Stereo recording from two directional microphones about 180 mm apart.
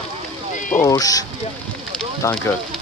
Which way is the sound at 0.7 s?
20° left (ahead or behind).